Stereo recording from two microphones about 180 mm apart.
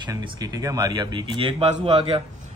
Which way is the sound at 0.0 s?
25° right (ahead or behind).